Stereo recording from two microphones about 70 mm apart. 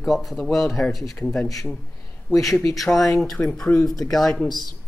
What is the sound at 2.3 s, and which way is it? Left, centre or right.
Speech, centre.